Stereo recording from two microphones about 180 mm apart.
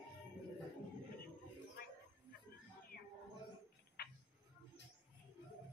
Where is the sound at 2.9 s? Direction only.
55° left (ahead or behind).